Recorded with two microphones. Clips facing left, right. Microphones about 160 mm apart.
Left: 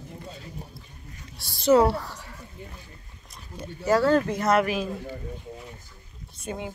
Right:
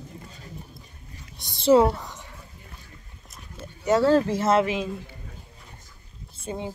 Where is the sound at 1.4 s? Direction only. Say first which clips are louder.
Right 1 dB; 25° right (ahead or behind).